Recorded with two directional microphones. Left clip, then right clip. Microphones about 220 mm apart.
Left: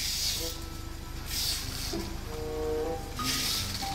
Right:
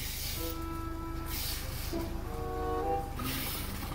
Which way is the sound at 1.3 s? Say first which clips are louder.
Left 7 dB; centre (ahead or behind).